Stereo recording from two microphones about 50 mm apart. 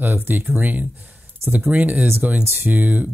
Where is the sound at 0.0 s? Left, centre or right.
Right.